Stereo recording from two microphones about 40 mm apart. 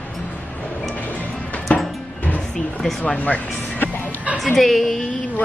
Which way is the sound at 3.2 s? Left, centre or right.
Left.